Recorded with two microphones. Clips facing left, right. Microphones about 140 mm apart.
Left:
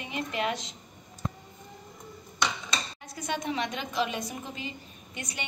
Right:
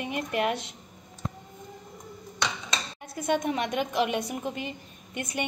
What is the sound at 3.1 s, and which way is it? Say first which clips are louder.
A woman's voice: right 6 dB; 55° right (ahead or behind).